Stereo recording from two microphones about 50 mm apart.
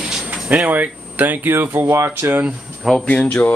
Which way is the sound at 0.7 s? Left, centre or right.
Right.